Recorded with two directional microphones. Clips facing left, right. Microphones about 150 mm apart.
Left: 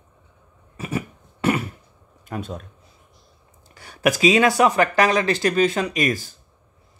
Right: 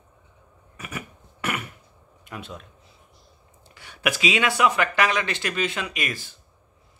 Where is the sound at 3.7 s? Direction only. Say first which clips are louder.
Left 6 dB; 40° left (ahead or behind).